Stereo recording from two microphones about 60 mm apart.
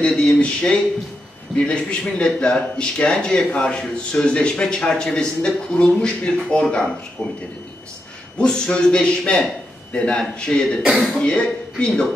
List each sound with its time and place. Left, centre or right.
0.0 s a sound: centre
1.7 s a man's voice: centre
8.4 s a man's voice: centre
10.8 s speech: centre
11.1 s a man's voice: centre